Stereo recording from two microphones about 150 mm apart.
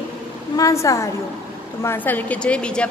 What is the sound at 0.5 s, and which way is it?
A woman's voice, 20° left (ahead or behind).